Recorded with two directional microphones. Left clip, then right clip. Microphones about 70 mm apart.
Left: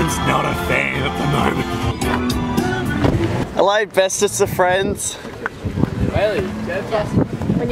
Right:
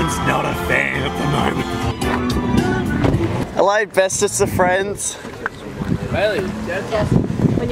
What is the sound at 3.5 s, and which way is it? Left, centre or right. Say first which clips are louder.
Speech: even; centre.